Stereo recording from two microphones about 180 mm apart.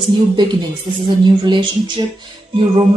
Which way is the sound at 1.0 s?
25° right (ahead or behind).